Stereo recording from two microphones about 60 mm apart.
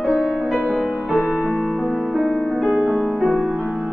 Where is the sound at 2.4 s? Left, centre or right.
Centre.